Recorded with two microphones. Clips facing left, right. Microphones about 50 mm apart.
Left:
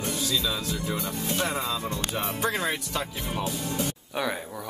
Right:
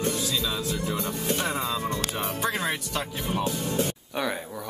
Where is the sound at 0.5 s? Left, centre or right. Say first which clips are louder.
Right 1 dB; centre.